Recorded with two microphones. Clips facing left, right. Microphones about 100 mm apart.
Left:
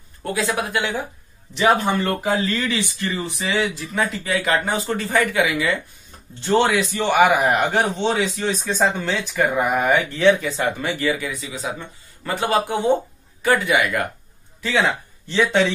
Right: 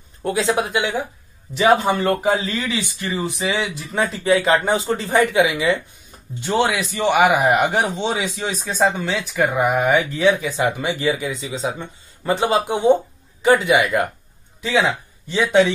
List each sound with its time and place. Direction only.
0.2 s speech: 20° right (ahead or behind)
6.4 s a man's voice: 5° right (ahead or behind)